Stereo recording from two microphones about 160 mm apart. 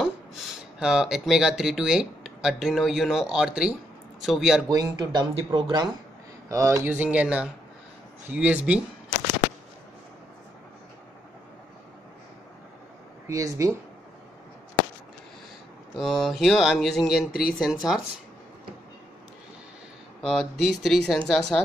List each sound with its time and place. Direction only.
0.7 s speech: 5° right (ahead or behind)
4.6 s speech: 25° right (ahead or behind)
13.3 s speech: 20° right (ahead or behind)
15.9 s speech: centre (ahead or behind)
20.2 s speech: centre (ahead or behind)